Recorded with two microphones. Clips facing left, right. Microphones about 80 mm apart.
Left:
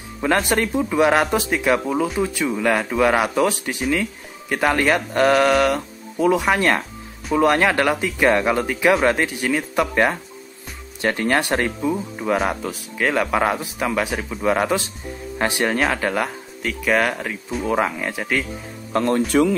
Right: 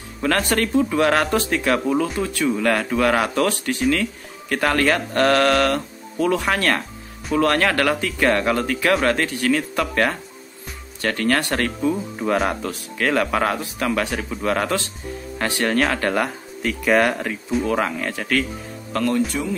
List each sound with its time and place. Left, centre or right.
0.2 s speech: centre
17.6 s speech: centre
18.9 s speech: left